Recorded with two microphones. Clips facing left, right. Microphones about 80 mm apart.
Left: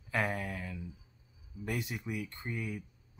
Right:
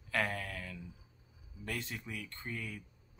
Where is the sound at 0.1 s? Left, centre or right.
Centre.